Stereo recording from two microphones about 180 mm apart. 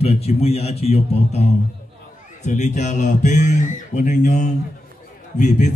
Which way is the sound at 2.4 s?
40° left (ahead or behind).